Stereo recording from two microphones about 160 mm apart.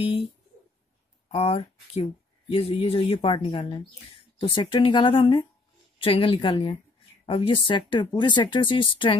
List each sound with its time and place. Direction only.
1.3 s speech: 40° left (ahead or behind)